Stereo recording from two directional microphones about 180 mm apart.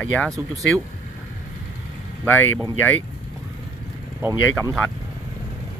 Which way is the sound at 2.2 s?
10° left (ahead or behind).